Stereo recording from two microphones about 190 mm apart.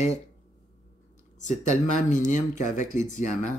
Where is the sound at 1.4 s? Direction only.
40° left (ahead or behind).